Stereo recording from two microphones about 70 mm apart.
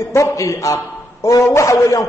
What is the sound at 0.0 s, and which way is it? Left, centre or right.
A man's voice, left.